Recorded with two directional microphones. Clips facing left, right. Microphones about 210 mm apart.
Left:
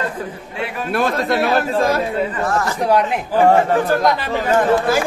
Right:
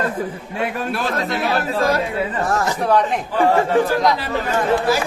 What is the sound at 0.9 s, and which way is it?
Speech, 50° left (ahead or behind).